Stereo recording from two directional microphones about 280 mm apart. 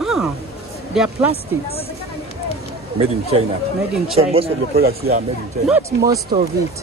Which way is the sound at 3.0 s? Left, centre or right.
Right.